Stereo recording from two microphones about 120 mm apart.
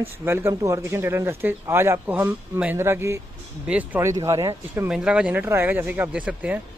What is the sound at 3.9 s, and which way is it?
Speech, 25° right (ahead or behind).